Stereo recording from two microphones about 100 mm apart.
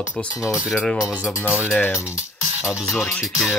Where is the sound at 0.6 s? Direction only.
10° right (ahead or behind).